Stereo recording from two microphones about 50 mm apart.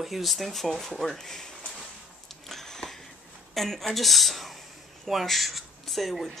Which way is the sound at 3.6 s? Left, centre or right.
Centre.